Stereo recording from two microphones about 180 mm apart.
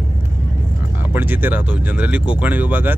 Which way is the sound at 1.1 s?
10° right (ahead or behind).